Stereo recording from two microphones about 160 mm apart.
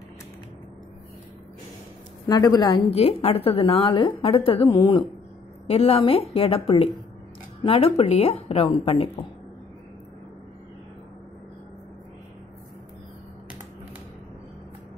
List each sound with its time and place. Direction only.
2.2 s a woman's voice: 25° left (ahead or behind)
2.9 s a woman's voice: 40° left (ahead or behind)